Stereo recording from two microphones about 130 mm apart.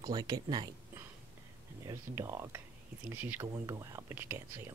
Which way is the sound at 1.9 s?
20° right (ahead or behind).